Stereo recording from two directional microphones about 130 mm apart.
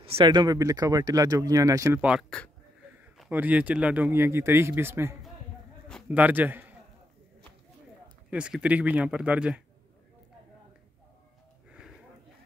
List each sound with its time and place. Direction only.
0.0 s a sound: 45° right (ahead or behind)
0.3 s speech: 30° right (ahead or behind)
2.0 s speech: 10° right (ahead or behind)
2.2 s speech: 10° left (ahead or behind)
3.3 s speech: 15° right (ahead or behind)
8.3 s speech: 5° right (ahead or behind)